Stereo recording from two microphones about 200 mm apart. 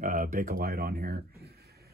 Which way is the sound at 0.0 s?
40° right (ahead or behind).